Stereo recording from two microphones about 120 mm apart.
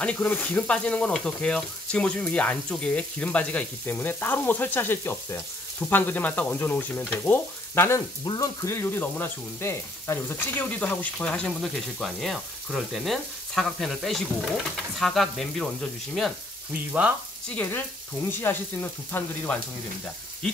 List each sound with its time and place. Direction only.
0.0 s speech: 10° left (ahead or behind)
17.6 s speech: 15° left (ahead or behind)